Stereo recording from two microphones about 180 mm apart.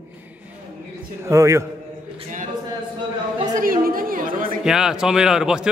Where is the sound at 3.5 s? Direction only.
50° right (ahead or behind).